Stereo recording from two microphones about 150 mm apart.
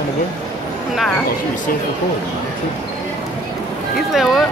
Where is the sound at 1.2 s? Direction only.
60° left (ahead or behind).